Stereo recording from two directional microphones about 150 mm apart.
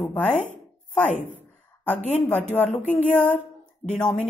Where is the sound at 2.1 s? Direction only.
10° left (ahead or behind).